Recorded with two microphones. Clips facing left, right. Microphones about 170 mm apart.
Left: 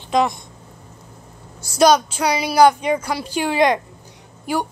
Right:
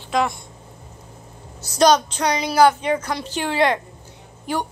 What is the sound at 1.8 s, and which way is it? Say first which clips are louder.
A woman's voice: left 1 dB; 10° left (ahead or behind).